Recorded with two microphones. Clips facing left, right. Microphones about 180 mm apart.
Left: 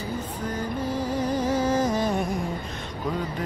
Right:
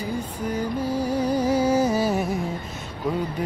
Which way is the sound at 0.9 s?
10° right (ahead or behind).